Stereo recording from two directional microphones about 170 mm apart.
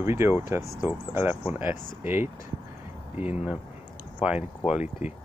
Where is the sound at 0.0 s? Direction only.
15° right (ahead or behind).